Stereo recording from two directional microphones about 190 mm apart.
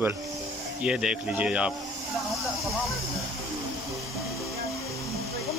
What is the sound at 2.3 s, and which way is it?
Hiss, centre (ahead or behind).